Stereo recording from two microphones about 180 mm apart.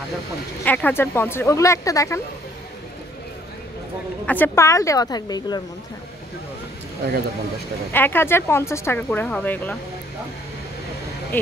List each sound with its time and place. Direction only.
0.7 s speech: 10° left (ahead or behind)
4.3 s a woman's voice: 15° left (ahead or behind)
7.9 s speech: 10° left (ahead or behind)